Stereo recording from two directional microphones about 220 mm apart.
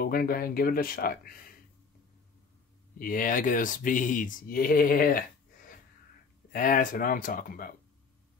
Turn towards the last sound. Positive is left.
turn(degrees=40)  # may be behind; listen again after turning